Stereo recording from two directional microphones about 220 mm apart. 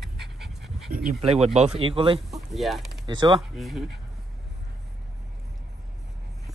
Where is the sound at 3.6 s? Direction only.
Centre (ahead or behind).